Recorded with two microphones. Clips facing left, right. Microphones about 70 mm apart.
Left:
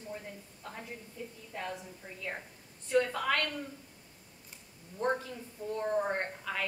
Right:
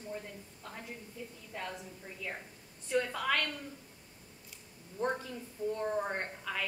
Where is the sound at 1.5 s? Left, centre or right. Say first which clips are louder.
Left 2 dB; centre.